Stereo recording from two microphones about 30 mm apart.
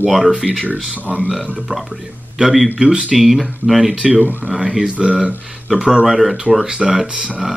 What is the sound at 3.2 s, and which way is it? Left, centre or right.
Speech, centre.